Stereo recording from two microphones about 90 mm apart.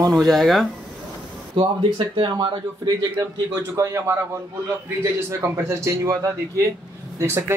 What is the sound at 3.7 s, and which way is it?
A man's voice, 30° right (ahead or behind).